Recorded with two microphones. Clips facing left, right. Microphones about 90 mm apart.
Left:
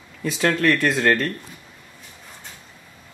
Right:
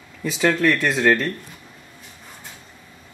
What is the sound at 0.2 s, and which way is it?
Speech, centre (ahead or behind).